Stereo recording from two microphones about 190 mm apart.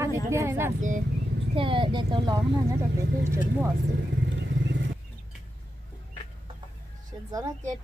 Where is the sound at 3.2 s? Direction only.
10° right (ahead or behind).